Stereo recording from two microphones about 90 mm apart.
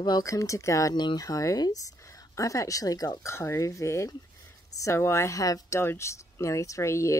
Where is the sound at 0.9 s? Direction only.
50° left (ahead or behind).